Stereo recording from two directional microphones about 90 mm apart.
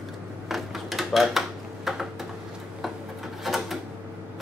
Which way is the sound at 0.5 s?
Centre (ahead or behind).